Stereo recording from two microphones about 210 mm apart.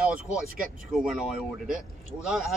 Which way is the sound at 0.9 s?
Centre (ahead or behind).